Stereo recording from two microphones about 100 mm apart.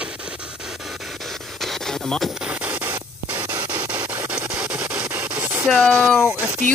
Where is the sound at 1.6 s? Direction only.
Centre (ahead or behind).